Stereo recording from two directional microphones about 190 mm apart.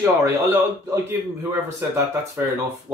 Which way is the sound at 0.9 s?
10° right (ahead or behind).